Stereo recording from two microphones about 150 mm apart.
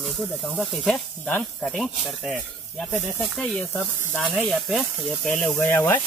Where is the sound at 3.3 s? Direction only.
5° left (ahead or behind).